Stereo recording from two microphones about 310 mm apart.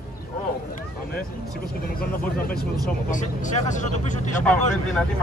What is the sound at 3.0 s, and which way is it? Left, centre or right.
Speech, left.